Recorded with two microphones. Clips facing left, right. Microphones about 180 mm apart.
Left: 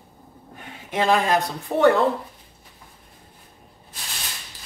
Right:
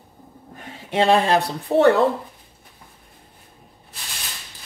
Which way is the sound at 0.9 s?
30° right (ahead or behind).